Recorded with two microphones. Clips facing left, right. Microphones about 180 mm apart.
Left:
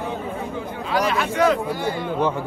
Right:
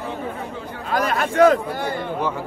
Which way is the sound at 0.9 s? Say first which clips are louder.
Even; 50° right (ahead or behind).